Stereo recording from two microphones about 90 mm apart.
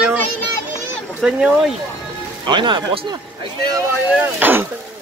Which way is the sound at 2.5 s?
60° right (ahead or behind).